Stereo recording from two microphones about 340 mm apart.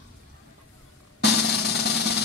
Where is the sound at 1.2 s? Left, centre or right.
Left.